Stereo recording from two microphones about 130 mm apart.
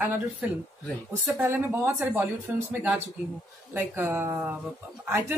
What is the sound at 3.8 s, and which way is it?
Speech, 15° right (ahead or behind).